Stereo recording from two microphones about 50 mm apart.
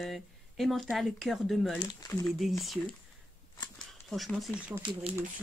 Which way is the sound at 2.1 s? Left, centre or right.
Left.